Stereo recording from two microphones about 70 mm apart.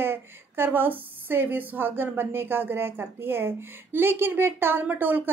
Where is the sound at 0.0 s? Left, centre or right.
Right.